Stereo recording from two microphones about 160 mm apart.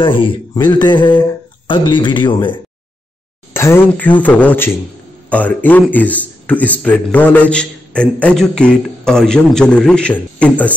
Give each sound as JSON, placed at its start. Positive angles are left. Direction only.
{"t": 0.0, "sound": "speech", "side_deg": 30}
{"t": 3.5, "sound": "a man's voice", "side_deg": 15}